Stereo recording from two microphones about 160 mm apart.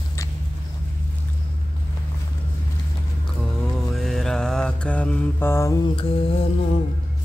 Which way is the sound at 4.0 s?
Centre (ahead or behind).